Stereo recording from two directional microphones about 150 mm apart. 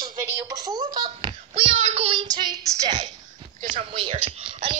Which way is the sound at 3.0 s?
55° right (ahead or behind).